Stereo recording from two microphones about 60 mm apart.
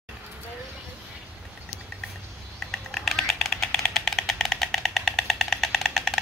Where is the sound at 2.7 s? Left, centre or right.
Centre.